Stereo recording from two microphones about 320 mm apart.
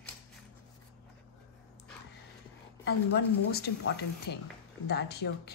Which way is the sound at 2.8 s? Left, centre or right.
Left.